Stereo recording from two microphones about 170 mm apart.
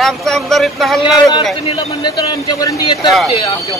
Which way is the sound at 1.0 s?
25° left (ahead or behind).